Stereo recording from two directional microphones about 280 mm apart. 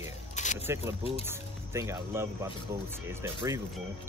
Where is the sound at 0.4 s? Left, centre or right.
Left.